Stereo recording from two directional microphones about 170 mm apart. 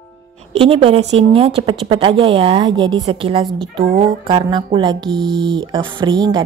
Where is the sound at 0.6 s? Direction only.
35° right (ahead or behind).